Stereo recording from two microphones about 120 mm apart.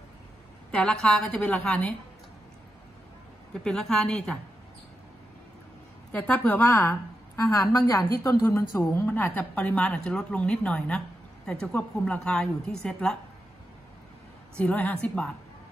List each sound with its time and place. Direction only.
0.7 s a woman's voice: 5° left (ahead or behind)
3.6 s a woman's voice: 5° left (ahead or behind)
6.1 s a woman's voice: 10° left (ahead or behind)
14.6 s a woman's voice: 15° left (ahead or behind)